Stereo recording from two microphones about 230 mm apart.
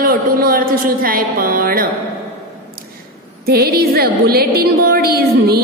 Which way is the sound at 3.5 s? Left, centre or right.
Right.